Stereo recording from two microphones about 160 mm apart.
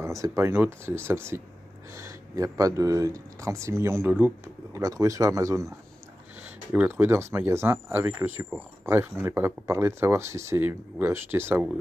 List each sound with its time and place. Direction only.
0.0 s speech: 20° right (ahead or behind)